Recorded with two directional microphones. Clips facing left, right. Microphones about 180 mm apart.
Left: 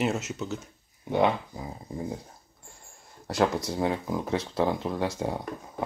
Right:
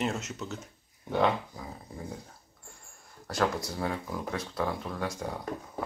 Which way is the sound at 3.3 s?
20° left (ahead or behind).